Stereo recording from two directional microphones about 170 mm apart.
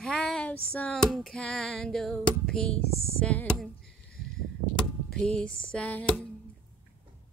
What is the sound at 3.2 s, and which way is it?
Speech, 10° left (ahead or behind).